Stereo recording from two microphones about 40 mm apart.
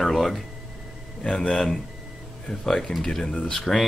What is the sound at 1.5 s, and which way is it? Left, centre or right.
Speech, centre.